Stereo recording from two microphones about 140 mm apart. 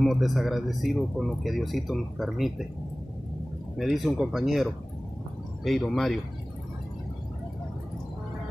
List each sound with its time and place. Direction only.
0.0 s speech: centre (ahead or behind)
3.7 s speech: centre (ahead or behind)